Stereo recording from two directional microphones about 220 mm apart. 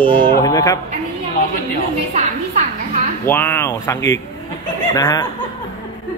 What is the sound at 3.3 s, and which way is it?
Speech, 10° left (ahead or behind).